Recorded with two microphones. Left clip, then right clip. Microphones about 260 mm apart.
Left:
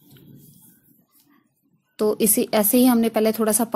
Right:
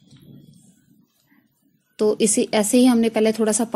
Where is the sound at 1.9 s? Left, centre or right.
Centre.